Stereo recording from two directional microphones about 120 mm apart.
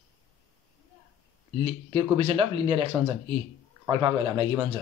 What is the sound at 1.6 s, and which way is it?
A man's voice, 50° right (ahead or behind).